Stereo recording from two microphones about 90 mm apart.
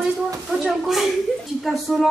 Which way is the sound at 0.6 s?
Centre (ahead or behind).